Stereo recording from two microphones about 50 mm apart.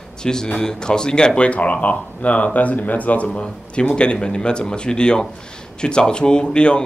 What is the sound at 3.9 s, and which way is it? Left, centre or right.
Speech, centre.